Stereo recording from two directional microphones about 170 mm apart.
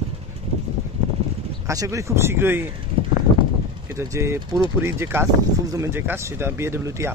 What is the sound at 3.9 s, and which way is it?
Speech, 15° right (ahead or behind).